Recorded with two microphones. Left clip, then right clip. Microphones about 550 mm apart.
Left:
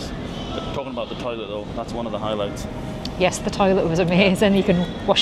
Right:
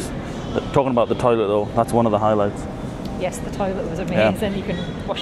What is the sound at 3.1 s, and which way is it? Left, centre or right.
Speech, left.